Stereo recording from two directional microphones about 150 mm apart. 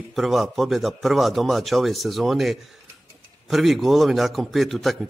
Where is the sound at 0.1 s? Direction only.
Centre (ahead or behind).